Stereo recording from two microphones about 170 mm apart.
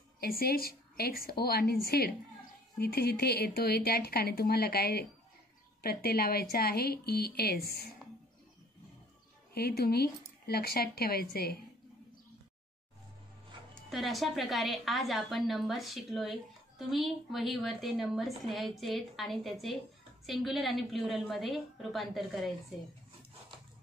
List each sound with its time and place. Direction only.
0.2 s a woman's voice: 65° left (ahead or behind)
9.5 s a woman's voice: 65° left (ahead or behind)
13.8 s a woman's voice: centre (ahead or behind)